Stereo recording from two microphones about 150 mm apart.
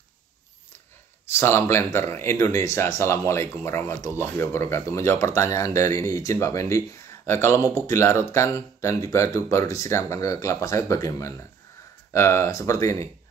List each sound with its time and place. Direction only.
1.2 s speech: 15° left (ahead or behind)